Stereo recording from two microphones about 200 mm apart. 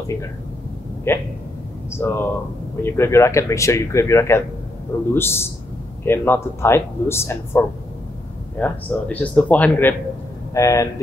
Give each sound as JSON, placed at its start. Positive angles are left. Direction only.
{"t": 1.1, "sound": "speech", "side_deg": 10}